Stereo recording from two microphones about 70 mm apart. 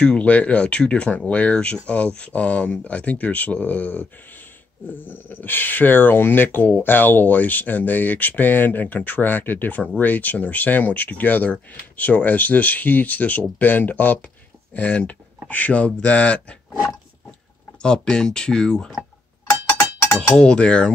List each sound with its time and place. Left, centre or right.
0.0 s speech: centre
17.8 s speech: centre
20.3 s speech: centre